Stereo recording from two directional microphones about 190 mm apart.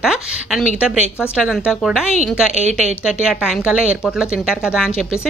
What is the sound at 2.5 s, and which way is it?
Speech, 35° right (ahead or behind).